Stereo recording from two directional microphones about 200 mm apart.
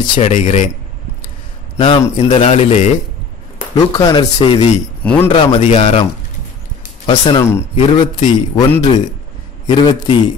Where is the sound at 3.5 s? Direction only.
20° left (ahead or behind).